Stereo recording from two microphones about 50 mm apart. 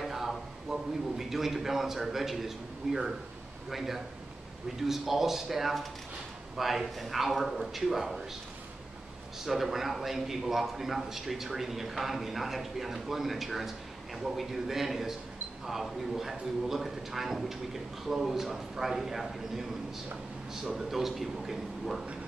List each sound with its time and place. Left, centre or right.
0.0 s a man's voice: centre
9.4 s a man's voice: centre
20.6 s a man's voice: centre